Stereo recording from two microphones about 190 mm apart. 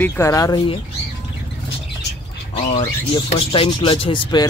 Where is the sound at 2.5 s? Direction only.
30° left (ahead or behind).